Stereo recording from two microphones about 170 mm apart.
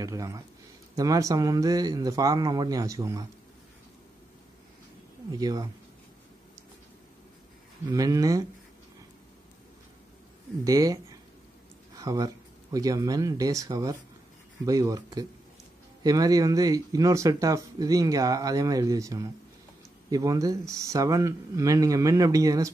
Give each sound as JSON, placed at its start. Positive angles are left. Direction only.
{"t": 0.0, "sound": "speech", "side_deg": -20}
{"t": 5.4, "sound": "speech", "side_deg": -20}
{"t": 7.9, "sound": "speech", "side_deg": -20}
{"t": 10.6, "sound": "speech", "side_deg": -20}
{"t": 12.0, "sound": "speech", "side_deg": -20}